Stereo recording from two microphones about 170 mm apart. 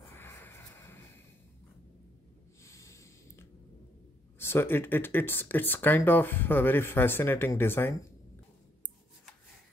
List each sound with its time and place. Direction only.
0.1 s snort: 15° left (ahead or behind)
2.6 s snort: 15° left (ahead or behind)
4.4 s speech: 15° left (ahead or behind)